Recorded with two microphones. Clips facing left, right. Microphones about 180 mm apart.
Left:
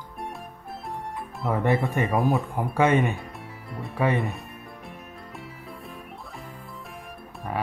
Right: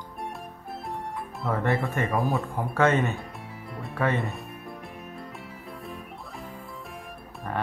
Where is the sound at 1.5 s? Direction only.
15° left (ahead or behind).